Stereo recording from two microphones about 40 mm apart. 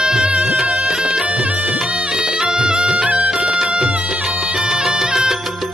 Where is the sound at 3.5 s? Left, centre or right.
Centre.